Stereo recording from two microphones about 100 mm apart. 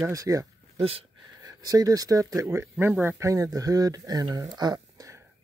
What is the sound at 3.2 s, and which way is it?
Speech, 35° right (ahead or behind).